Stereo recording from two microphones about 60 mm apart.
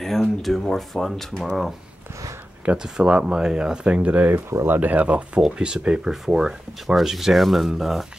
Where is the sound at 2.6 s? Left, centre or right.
Right; by 8.1 s centre.